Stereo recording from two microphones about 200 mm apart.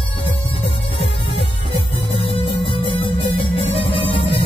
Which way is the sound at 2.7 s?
25° left (ahead or behind).